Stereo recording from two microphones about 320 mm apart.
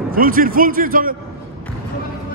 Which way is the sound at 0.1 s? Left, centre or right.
Right.